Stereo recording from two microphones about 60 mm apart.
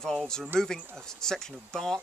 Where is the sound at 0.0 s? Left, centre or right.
Centre.